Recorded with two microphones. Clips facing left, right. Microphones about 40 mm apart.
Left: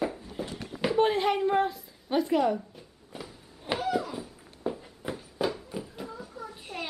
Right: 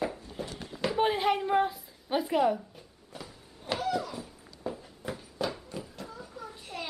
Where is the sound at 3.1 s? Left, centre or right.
Centre.